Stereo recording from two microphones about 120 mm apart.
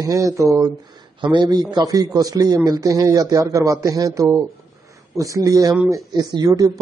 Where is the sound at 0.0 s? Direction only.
30° right (ahead or behind).